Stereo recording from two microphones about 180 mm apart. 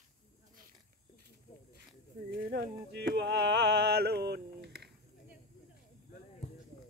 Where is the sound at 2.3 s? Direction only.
70° right (ahead or behind).